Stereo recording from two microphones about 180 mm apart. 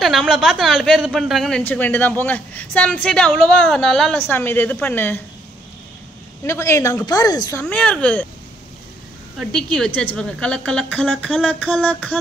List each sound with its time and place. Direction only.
0.0 s speech: centre (ahead or behind)
4.3 s a woman's voice: 10° left (ahead or behind)
6.4 s a woman's voice: 15° left (ahead or behind)
7.6 s a woman's voice: 5° left (ahead or behind)
9.4 s a woman's voice: 5° left (ahead or behind)